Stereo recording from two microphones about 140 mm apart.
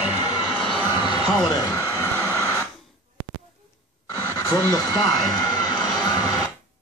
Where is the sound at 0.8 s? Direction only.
35° left (ahead or behind); by 2.6 s 15° left (ahead or behind).